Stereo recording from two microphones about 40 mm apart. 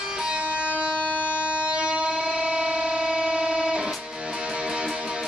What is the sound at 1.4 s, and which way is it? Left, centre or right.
Train, right.